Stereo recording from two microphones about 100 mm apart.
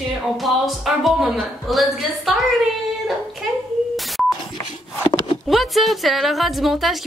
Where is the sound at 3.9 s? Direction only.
Centre (ahead or behind).